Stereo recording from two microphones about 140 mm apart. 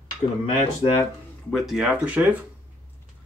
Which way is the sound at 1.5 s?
5° right (ahead or behind).